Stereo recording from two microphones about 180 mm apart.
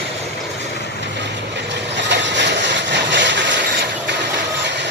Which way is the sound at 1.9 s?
75° right (ahead or behind).